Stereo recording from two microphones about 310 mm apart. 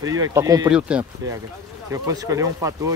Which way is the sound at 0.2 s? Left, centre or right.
Centre.